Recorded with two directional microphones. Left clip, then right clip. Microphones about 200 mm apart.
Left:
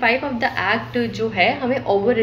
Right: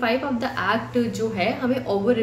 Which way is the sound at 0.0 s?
15° right (ahead or behind).